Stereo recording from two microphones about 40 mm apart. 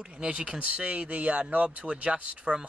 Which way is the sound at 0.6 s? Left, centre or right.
Right.